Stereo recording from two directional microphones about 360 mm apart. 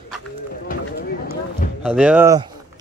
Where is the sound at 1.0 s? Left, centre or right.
Left.